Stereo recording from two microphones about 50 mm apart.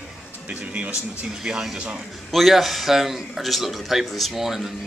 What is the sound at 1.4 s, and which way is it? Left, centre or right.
A man's voice, centre.